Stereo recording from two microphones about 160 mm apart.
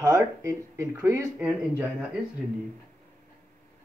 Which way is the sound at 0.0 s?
20° right (ahead or behind).